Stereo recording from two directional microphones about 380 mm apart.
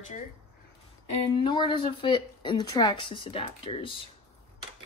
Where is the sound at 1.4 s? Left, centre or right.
Centre.